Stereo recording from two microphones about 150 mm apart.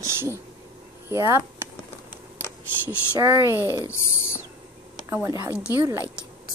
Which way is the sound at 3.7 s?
20° left (ahead or behind).